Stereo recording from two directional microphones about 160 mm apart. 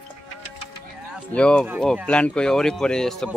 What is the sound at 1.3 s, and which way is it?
Speech, 5° left (ahead or behind).